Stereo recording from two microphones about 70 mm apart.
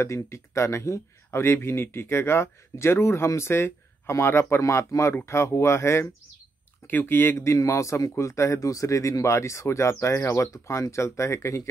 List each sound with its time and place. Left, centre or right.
0.0 s speech: left
6.9 s speech: left
7.5 s speech: left